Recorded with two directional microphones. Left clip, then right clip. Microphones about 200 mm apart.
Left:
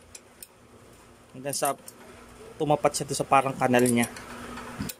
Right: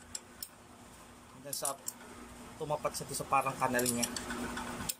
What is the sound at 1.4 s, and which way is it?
Speech, 45° left (ahead or behind).